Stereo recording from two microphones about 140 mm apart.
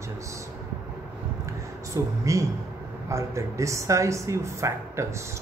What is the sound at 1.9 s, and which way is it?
Speech, 25° right (ahead or behind).